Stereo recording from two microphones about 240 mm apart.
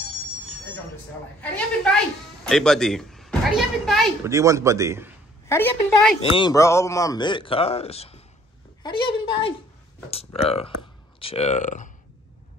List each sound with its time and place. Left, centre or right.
1.4 s speech: centre
4.3 s a man's voice: centre
5.5 s a woman's voice: centre; by 11.9 s left